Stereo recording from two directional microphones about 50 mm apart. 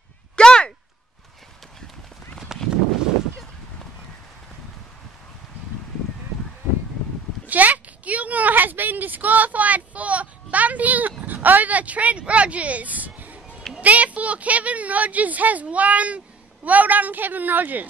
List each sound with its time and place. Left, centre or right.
0.4 s a sound: centre
2.5 s horse: centre
7.4 s a woman's voice: right